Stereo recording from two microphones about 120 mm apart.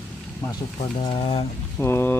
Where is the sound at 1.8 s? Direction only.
20° left (ahead or behind).